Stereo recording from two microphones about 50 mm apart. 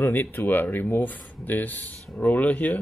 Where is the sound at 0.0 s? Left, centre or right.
Left.